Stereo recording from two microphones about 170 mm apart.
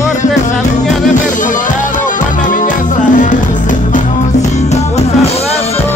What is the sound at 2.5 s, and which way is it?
Music, 50° left (ahead or behind).